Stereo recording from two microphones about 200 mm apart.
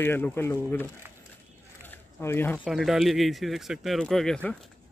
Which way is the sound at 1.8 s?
10° left (ahead or behind).